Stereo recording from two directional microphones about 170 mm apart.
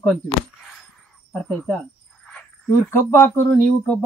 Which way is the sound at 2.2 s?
10° left (ahead or behind).